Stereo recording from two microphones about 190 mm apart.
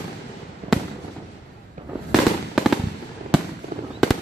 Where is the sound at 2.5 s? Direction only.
Centre (ahead or behind).